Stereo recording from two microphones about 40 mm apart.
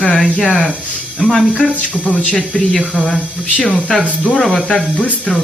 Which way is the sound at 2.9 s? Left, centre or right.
Centre.